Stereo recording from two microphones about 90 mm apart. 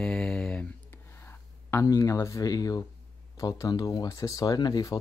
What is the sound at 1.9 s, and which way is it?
Speech, 40° left (ahead or behind).